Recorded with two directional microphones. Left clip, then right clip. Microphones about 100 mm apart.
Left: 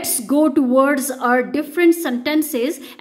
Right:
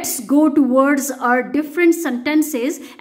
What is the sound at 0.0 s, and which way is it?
A woman's voice, 10° left (ahead or behind).